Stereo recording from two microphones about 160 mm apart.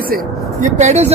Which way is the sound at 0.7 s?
45° right (ahead or behind).